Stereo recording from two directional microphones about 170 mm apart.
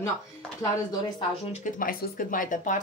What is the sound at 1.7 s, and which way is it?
Speech, 55° left (ahead or behind).